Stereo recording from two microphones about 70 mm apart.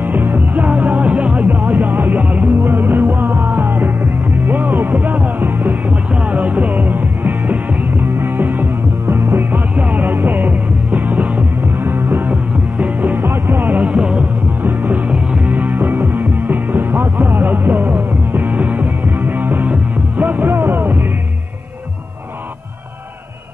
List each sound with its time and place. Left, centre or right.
0.0 s music: right
12.3 s music: centre
13.7 s music: centre
14.6 s music: right
15.5 s music: right